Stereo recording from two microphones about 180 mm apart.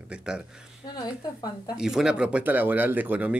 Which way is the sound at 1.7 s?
5° right (ahead or behind).